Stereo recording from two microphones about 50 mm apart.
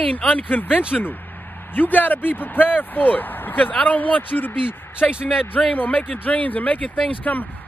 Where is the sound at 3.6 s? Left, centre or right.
Left.